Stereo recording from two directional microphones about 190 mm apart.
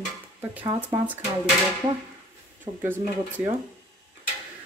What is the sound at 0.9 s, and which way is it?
Speech, 15° right (ahead or behind).